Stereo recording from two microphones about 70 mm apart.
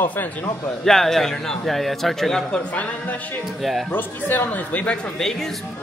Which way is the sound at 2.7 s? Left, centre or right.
Left.